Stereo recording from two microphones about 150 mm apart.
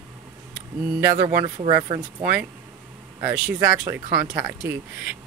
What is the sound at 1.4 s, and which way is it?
Speech, 30° right (ahead or behind).